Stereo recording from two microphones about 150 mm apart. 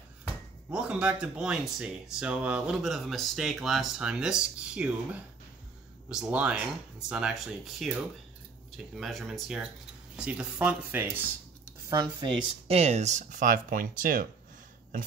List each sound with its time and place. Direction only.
0.7 s speech: 5° right (ahead or behind)
6.0 s speech: 5° right (ahead or behind)
11.9 s speech: 30° right (ahead or behind); by 14.2 s 65° right (ahead or behind)